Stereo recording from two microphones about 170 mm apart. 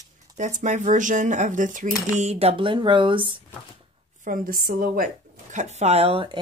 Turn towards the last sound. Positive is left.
turn(degrees=-30)  # may be behind; listen again after turning